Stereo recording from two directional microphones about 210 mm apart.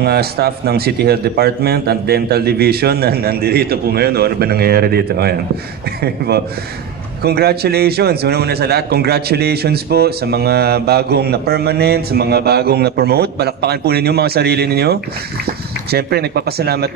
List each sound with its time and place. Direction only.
0.0 s a man's voice: 50° right (ahead or behind)
7.2 s a man's voice: 50° right (ahead or behind)